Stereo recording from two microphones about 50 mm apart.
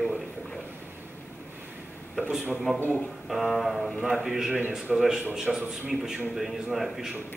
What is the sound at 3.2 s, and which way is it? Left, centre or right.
A man's voice, centre.